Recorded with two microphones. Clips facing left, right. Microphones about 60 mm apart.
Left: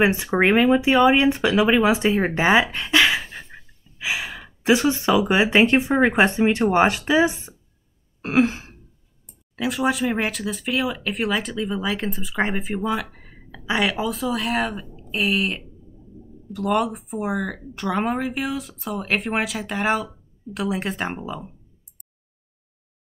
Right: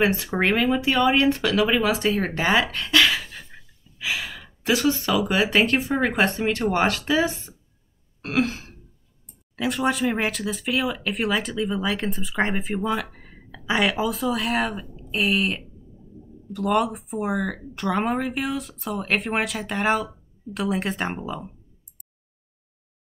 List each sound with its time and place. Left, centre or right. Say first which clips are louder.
0.0 s speech: left 3 dB; left
8.2 s throat clearing: left 4 dB; left
9.6 s speech: left 1 dB; centre